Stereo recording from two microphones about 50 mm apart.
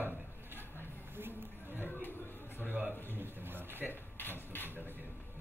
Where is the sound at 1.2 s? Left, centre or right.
Right.